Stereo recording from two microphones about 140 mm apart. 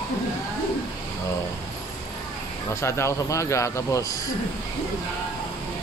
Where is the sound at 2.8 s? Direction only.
20° left (ahead or behind).